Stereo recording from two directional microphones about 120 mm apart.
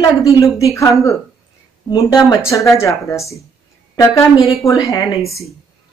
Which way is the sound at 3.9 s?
25° left (ahead or behind).